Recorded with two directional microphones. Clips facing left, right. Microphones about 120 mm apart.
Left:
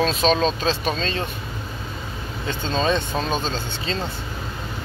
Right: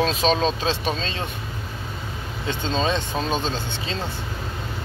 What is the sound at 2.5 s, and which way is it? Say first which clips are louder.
Speech: left 1 dB; 20° right (ahead or behind).